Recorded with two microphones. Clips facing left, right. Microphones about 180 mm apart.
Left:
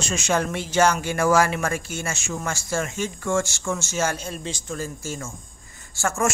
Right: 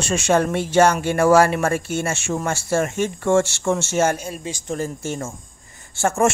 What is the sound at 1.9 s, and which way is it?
Speech, 60° right (ahead or behind).